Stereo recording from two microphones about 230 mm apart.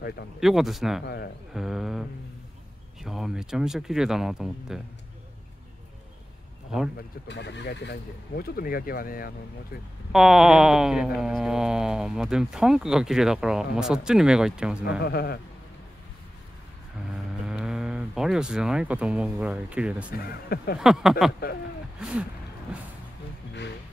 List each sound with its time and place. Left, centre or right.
0.4 s speech: centre
1.0 s speech: left
1.5 s speech: centre
7.0 s speech: left
10.1 s speech: centre
15.0 s a man's voice: left
17.1 s speech: centre
20.4 s a man's voice: left
20.8 s speech: centre